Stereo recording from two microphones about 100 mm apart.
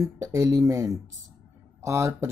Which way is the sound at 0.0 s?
35° right (ahead or behind).